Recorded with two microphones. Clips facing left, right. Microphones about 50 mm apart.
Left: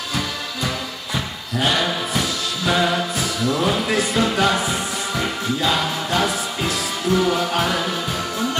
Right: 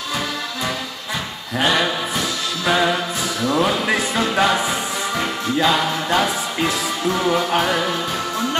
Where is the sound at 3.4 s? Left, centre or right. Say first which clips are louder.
Right 2 dB; right.